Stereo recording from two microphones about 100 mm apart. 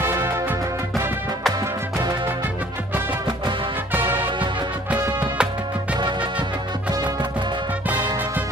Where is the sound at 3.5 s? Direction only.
50° right (ahead or behind).